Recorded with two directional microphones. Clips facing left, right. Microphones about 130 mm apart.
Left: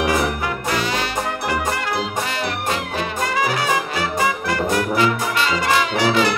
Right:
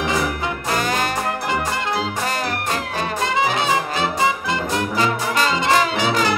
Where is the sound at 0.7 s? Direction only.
45° right (ahead or behind).